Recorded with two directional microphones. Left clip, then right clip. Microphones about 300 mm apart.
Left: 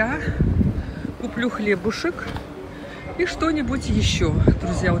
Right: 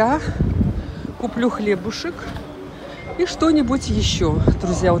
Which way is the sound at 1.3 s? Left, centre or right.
Centre.